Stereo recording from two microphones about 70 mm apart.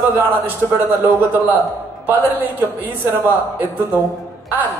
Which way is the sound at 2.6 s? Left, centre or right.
Right.